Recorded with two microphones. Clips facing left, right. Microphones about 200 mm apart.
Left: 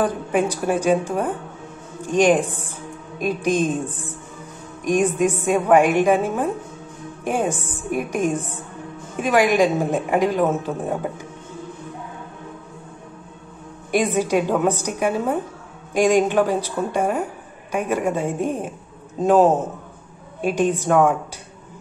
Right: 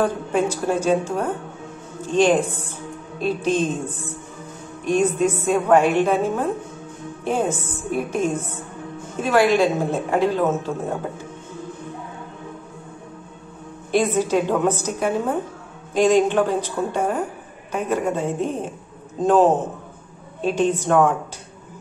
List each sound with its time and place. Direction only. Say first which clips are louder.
0.0 s speech: even; 15° left (ahead or behind)
13.9 s speech: even; 10° left (ahead or behind)